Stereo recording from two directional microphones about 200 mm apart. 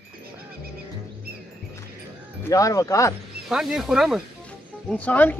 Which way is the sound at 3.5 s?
Centre (ahead or behind).